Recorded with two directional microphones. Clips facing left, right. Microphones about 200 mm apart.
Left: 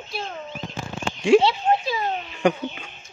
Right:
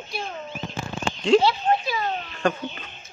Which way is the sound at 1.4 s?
20° left (ahead or behind).